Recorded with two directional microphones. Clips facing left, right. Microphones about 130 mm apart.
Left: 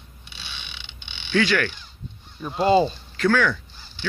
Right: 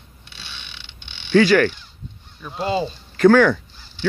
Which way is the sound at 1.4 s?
40° right (ahead or behind).